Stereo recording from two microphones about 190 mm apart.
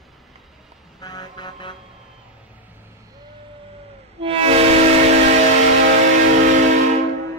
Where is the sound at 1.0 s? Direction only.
20° left (ahead or behind).